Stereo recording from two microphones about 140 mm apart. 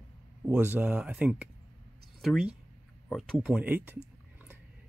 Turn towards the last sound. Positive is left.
turn(degrees=-15)  # may be behind; listen again after turning